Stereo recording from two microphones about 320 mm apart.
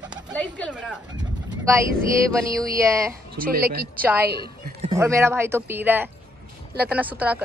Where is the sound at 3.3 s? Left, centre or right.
Right.